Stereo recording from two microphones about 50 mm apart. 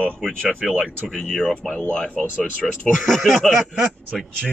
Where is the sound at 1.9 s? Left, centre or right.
Centre.